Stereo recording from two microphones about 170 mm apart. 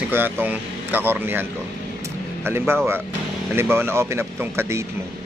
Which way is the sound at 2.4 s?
15° right (ahead or behind).